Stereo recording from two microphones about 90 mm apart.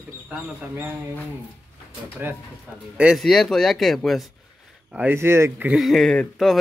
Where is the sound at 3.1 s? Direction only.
5° left (ahead or behind).